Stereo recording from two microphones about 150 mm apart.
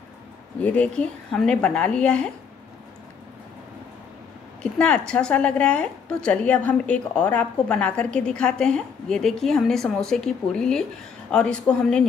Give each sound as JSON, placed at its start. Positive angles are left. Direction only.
{"t": 0.6, "sound": "a woman's voice", "side_deg": 10}
{"t": 4.7, "sound": "a woman's voice", "side_deg": 5}